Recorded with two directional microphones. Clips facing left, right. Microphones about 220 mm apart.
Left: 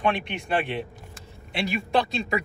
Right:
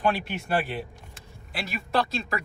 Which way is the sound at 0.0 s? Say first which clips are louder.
Even; 5° right (ahead or behind).